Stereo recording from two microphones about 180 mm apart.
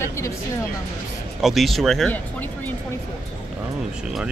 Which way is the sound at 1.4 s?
Centre (ahead or behind).